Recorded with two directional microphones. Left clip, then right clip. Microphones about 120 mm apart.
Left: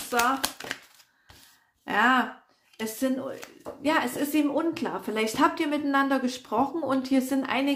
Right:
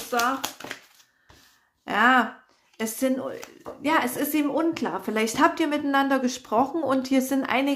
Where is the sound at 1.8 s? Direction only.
25° right (ahead or behind).